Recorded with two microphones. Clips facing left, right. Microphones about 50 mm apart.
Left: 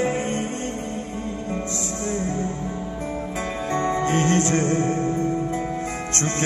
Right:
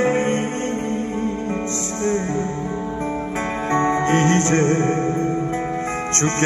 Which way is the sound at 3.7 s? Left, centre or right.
Right.